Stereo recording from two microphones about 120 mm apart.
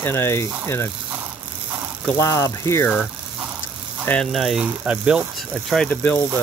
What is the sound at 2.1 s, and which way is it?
Speech, 25° left (ahead or behind).